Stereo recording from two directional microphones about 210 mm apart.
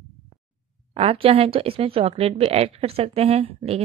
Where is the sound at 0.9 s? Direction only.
30° right (ahead or behind).